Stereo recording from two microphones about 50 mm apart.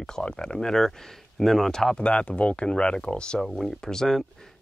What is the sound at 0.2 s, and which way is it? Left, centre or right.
Speech, centre.